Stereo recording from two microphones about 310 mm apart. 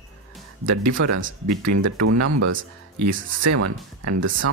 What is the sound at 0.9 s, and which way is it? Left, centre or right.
Speech, right.